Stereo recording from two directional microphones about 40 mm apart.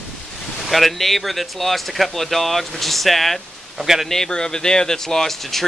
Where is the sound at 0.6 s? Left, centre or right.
Centre.